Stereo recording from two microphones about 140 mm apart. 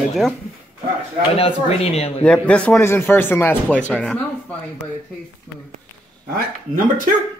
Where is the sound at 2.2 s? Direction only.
10° left (ahead or behind).